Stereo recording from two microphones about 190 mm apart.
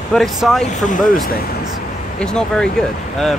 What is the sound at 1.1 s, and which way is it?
Speech, 50° left (ahead or behind).